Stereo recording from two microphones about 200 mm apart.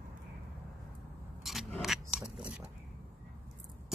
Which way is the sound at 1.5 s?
Centre (ahead or behind).